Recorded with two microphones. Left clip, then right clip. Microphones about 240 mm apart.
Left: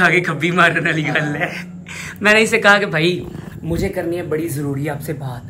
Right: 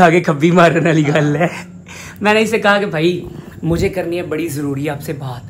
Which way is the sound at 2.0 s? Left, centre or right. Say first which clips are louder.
Left 1 dB; centre.